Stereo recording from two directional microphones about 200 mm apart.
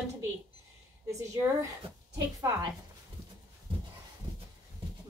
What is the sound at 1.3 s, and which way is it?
Speech, 15° right (ahead or behind).